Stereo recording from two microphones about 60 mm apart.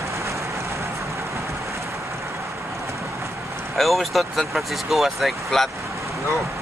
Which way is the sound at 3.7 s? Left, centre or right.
Centre.